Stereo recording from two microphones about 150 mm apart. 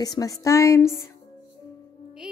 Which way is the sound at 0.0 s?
25° left (ahead or behind).